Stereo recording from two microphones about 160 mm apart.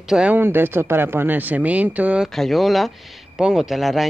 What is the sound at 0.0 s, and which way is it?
Speech, 5° right (ahead or behind).